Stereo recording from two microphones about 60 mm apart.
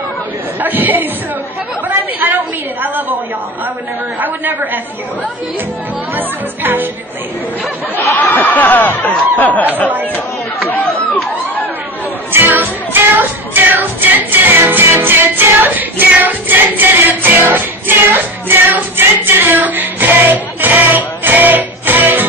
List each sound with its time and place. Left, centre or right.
0.6 s speech: right
1.9 s a sound: right
6.1 s speech: right
8.0 s speech: left
12.3 s music: right